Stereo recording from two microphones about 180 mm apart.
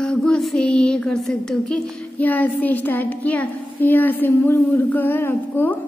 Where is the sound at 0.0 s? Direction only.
5° left (ahead or behind).